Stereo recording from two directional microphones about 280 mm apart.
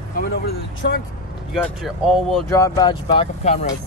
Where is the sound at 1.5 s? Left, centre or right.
Centre.